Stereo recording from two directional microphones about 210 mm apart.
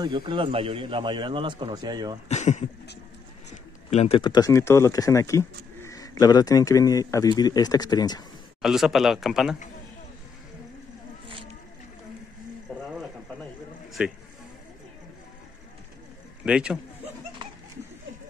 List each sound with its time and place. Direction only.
0.0 s a man's voice: 25° right (ahead or behind)
2.2 s a man's voice: 35° left (ahead or behind)
8.6 s a man's voice: centre (ahead or behind)
14.0 s a man's voice: 5° right (ahead or behind)
16.4 s a man's voice: 5° right (ahead or behind)